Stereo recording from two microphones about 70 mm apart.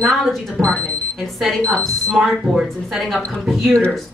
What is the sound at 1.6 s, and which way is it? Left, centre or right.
Speech, centre.